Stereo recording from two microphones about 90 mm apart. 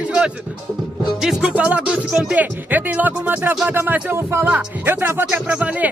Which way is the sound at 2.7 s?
20° right (ahead or behind).